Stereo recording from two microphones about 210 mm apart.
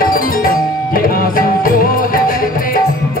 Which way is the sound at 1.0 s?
40° left (ahead or behind).